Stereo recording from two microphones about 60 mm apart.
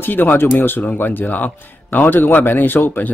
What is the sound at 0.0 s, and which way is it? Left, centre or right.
Speech, left.